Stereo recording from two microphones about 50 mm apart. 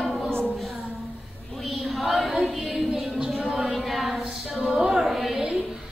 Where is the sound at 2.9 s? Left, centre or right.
Centre.